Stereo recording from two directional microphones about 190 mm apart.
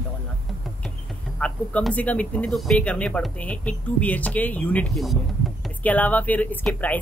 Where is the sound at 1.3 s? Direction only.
5° left (ahead or behind).